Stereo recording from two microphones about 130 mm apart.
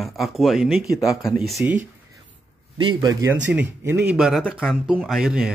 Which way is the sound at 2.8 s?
40° right (ahead or behind).